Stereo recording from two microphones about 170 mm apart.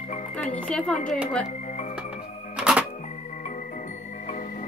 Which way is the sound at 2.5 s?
5° right (ahead or behind).